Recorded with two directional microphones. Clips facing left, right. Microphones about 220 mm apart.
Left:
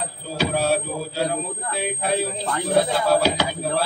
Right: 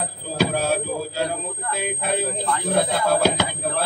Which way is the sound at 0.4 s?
45° right (ahead or behind).